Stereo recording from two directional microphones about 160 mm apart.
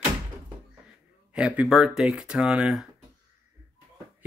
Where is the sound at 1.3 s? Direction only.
5° right (ahead or behind).